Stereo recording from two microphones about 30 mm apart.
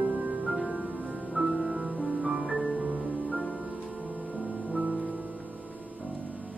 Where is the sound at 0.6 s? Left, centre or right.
Right.